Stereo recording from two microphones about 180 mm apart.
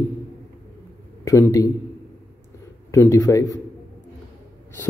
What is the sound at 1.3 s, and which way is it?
Speech, 15° left (ahead or behind).